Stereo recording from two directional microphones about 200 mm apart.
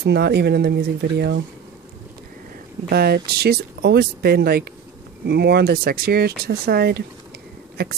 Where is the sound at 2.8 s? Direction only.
50° right (ahead or behind).